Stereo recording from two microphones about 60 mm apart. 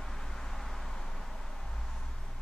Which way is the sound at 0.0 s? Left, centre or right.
Centre.